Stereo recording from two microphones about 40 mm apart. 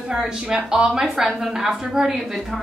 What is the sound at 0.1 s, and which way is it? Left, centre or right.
A woman's voice, centre.